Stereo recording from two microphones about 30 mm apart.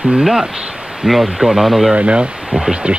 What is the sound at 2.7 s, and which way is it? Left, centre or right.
Speech, right.